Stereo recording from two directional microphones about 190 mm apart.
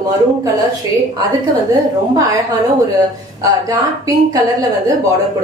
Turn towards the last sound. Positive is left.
turn(degrees=-20)  # may be behind; listen again after turning